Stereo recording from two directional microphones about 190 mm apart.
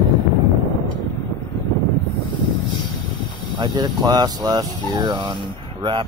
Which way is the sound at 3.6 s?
25° right (ahead or behind).